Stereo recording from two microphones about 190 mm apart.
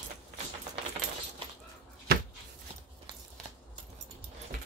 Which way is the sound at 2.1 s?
60° right (ahead or behind).